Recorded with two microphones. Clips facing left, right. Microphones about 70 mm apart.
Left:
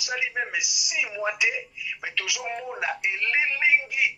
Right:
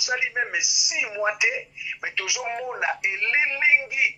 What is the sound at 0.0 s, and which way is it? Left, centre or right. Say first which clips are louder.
Speech: right 3 dB; centre.